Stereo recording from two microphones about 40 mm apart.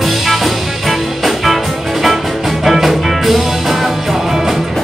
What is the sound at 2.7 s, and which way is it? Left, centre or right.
Music, centre.